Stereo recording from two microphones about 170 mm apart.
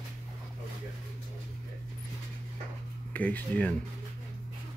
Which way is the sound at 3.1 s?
10° left (ahead or behind).